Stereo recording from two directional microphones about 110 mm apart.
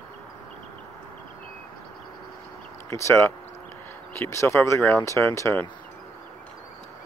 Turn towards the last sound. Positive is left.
turn(degrees=20)  # may be behind; listen again after turning